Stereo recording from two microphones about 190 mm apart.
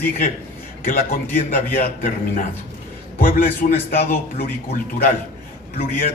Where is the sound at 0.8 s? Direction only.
45° left (ahead or behind).